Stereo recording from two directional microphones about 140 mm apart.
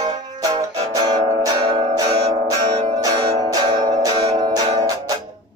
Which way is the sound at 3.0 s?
25° right (ahead or behind).